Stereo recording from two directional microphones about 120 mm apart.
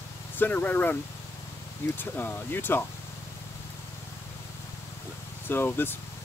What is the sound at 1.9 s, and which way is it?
Speech, 15° left (ahead or behind).